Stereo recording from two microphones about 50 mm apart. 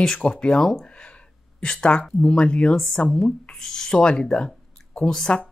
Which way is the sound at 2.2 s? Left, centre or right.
Left.